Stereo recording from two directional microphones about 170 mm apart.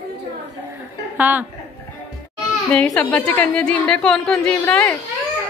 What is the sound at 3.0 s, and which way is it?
A woman's voice, 10° left (ahead or behind).